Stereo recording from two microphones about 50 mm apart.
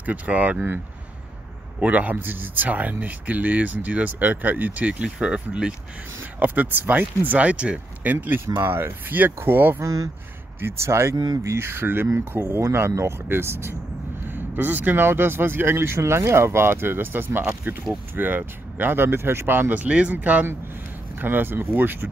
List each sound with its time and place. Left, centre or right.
0.0 s speech: right
1.8 s speech: right
6.4 s speech: right
7.4 s speech: right
8.6 s speech: right
9.0 s speech: right
10.6 s speech: right
14.3 s speech: right
19.8 s speech: right
21.2 s speech: right